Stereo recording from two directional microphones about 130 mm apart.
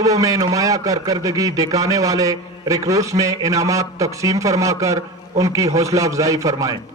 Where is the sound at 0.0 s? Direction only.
25° right (ahead or behind).